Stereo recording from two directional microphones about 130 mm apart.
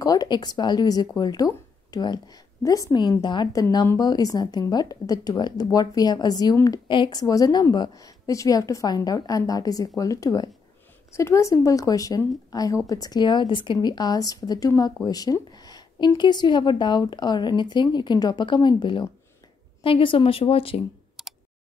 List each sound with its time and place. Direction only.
0.0 s a woman's voice: 30° left (ahead or behind); by 20.8 s 50° left (ahead or behind)
21.2 s clicking: 5° right (ahead or behind)